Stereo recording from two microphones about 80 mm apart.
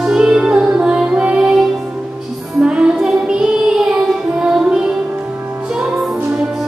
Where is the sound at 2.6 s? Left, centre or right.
Centre.